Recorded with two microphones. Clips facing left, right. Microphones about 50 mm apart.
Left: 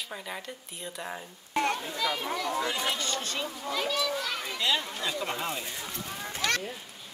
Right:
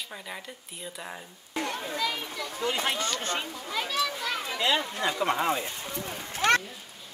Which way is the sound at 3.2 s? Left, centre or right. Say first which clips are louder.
Right 2 dB; right.